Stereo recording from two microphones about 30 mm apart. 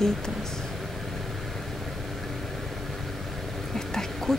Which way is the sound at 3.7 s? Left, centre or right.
Centre.